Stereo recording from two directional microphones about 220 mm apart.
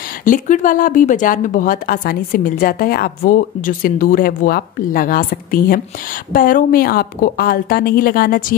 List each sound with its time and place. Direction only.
0.2 s a woman's voice: 35° left (ahead or behind)